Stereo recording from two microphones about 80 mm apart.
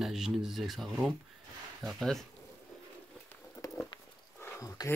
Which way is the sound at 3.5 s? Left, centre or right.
Left.